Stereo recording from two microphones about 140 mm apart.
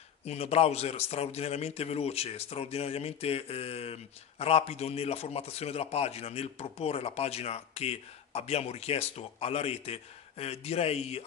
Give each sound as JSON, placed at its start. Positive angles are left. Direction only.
{"t": 0.2, "sound": "a man's voice", "side_deg": 50}